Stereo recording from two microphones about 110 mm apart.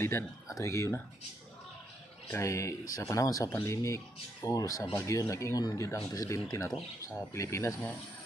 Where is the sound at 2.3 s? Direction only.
25° left (ahead or behind).